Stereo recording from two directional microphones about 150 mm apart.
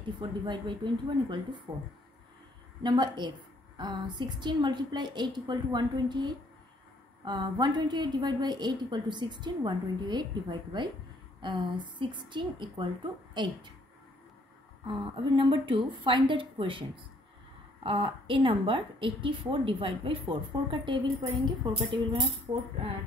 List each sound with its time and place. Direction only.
0.0 s a woman's voice: 30° right (ahead or behind)
14.9 s a woman's voice: 35° right (ahead or behind)
17.8 s a woman's voice: 35° right (ahead or behind)